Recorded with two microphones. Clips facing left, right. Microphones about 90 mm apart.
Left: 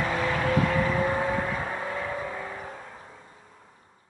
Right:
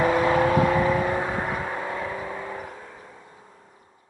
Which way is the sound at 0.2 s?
30° right (ahead or behind).